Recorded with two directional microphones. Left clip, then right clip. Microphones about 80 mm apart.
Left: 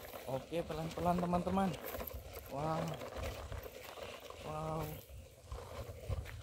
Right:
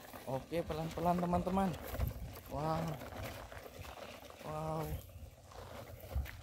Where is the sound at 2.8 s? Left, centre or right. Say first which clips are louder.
Left 1 dB; left.